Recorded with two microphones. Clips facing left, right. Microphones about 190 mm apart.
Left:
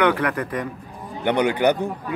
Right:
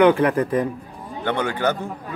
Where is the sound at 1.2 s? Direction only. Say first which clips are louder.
Left 4 dB; 15° left (ahead or behind).